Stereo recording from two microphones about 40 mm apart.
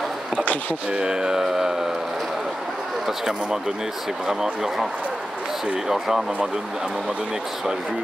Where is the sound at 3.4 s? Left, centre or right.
Centre.